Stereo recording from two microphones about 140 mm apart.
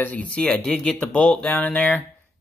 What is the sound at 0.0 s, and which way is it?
Speech, 10° left (ahead or behind).